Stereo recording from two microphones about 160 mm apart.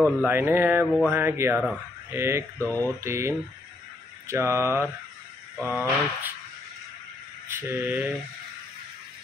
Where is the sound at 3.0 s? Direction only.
15° right (ahead or behind).